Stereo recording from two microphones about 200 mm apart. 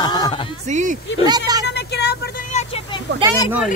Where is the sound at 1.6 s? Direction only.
55° left (ahead or behind).